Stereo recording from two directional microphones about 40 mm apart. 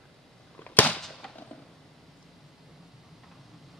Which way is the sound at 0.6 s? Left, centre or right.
Left.